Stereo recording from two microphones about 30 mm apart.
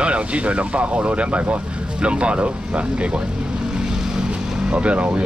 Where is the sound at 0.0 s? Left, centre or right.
Right.